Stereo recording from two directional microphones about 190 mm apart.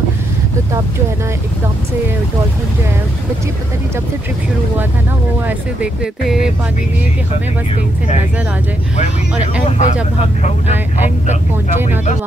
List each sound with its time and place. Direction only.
5.8 s speech: 5° right (ahead or behind)
9.7 s speech: 40° left (ahead or behind)